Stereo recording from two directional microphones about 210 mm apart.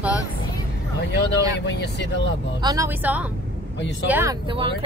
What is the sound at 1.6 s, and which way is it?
Speech, 55° left (ahead or behind).